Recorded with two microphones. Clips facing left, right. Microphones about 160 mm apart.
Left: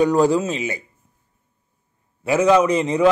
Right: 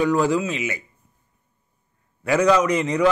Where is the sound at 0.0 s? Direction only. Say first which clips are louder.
Left 3 dB; 35° left (ahead or behind).